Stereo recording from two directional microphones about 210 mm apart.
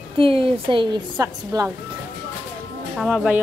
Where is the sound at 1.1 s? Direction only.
15° right (ahead or behind).